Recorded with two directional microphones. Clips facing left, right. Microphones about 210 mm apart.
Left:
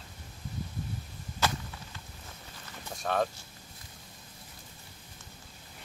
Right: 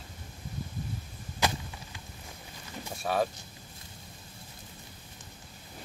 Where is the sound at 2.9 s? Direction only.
5° right (ahead or behind).